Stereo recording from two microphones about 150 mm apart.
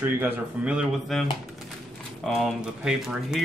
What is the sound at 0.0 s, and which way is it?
Speech, 10° right (ahead or behind).